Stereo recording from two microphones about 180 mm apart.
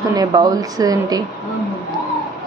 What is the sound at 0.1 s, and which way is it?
A woman's voice, 20° right (ahead or behind).